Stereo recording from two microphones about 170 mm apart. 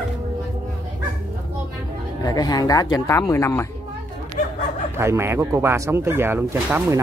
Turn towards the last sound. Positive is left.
turn(degrees=-15)  # may be behind; listen again after turning